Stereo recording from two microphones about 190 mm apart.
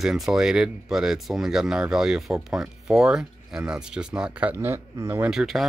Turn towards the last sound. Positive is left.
turn(degrees=0)  # may be behind; listen again after turning